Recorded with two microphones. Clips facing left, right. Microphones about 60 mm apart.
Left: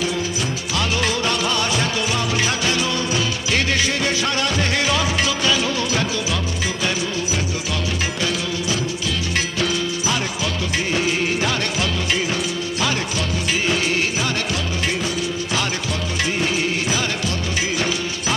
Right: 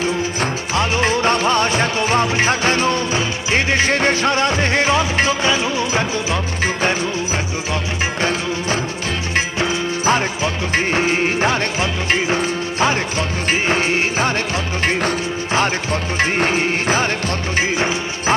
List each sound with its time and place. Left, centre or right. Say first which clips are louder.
0.0 s music: right 3 dB; right
6.6 s music: right 7 dB; right
8.2 s music: right 3 dB; right